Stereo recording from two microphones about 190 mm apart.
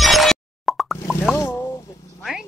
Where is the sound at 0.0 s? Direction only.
Centre (ahead or behind).